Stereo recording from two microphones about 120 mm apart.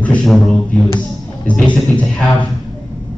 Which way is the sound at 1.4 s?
10° left (ahead or behind).